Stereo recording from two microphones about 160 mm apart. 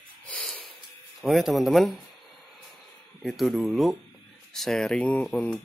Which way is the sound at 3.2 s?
Centre (ahead or behind).